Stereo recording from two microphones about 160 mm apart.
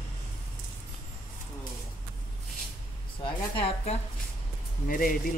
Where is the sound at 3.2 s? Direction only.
35° left (ahead or behind).